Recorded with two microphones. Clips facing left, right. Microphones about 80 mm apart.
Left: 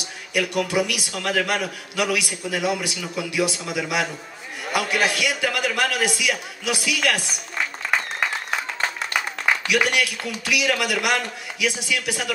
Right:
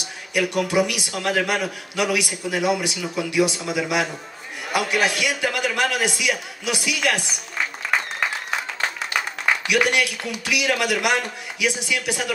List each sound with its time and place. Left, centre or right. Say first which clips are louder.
0.3 s a man's voice: right 1 dB; right
9.7 s a man's voice: right 3 dB; right